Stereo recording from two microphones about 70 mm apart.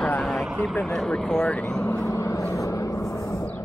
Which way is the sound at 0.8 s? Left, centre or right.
Centre.